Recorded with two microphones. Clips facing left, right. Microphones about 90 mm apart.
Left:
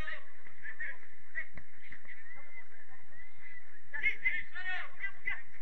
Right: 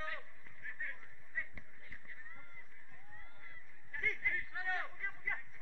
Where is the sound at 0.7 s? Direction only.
15° left (ahead or behind).